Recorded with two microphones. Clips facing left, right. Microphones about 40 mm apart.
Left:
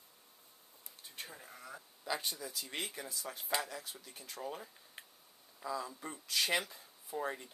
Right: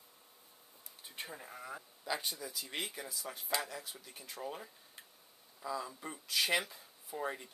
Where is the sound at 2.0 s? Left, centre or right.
Centre.